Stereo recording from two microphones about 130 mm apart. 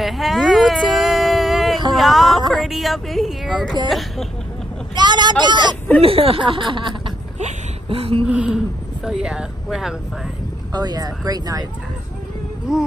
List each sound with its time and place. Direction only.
0.0 s a sound: centre (ahead or behind)
2.5 s speech: centre (ahead or behind)
4.9 s speech: 35° right (ahead or behind)
5.9 s speech: 45° right (ahead or behind)
7.3 s a sound: 55° right (ahead or behind)
8.3 s speech: 5° right (ahead or behind)
10.7 s speech: 30° right (ahead or behind)